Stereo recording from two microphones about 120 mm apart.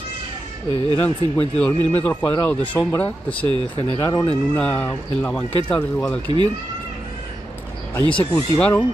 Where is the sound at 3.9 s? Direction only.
30° left (ahead or behind).